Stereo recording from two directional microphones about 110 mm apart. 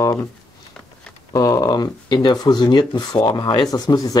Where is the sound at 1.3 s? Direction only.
30° left (ahead or behind).